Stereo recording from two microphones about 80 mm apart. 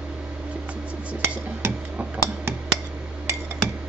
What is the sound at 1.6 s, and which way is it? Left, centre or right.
Tick-tock, right.